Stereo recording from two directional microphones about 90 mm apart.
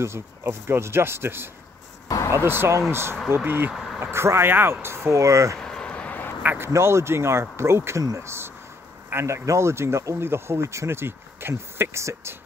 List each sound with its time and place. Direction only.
0.0 s speech: 30° right (ahead or behind)
3.7 s vehicle: 5° right (ahead or behind)
4.0 s speech: 30° right (ahead or behind)
5.6 s a sound: 5° left (ahead or behind)
6.4 s speech: 20° right (ahead or behind)
6.7 s speech: 30° right (ahead or behind)